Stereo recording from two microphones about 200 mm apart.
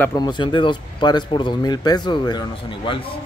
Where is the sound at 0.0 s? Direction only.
20° left (ahead or behind).